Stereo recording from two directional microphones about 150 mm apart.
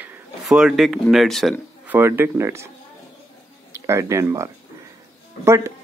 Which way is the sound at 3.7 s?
20° right (ahead or behind).